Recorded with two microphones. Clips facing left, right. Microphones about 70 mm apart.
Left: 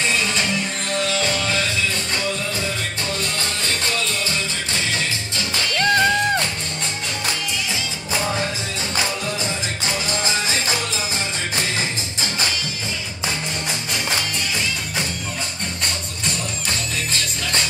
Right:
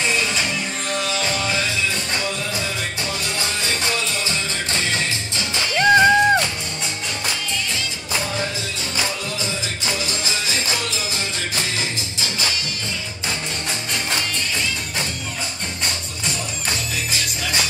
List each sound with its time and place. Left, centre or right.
0.1 s music: centre
5.8 s music: centre